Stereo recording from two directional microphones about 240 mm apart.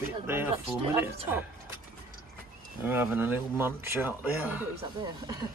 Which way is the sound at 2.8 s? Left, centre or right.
Centre.